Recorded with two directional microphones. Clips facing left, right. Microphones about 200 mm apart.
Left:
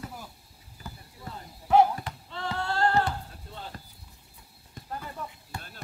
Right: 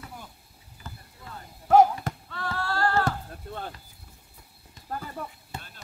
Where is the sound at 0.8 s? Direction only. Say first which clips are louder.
Left 1 dB; 10° left (ahead or behind).